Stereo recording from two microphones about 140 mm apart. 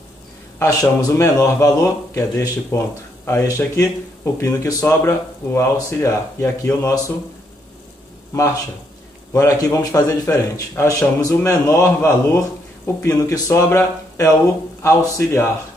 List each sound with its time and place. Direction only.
0.6 s speech: 25° left (ahead or behind)
9.3 s speech: 20° left (ahead or behind)